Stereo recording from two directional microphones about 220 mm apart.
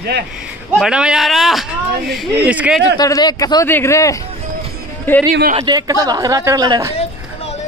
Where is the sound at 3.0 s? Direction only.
20° left (ahead or behind).